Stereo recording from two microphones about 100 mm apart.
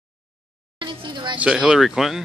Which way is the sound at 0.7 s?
55° right (ahead or behind).